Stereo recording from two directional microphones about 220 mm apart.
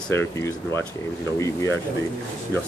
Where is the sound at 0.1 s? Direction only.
10° left (ahead or behind).